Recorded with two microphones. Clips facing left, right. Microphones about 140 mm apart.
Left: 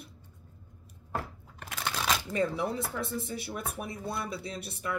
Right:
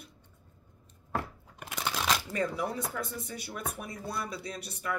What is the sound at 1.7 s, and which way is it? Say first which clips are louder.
Crunch: even; centre (ahead or behind).